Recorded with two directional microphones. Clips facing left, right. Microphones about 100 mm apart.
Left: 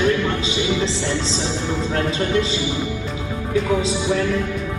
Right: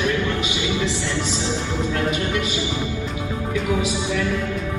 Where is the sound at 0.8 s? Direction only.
25° left (ahead or behind).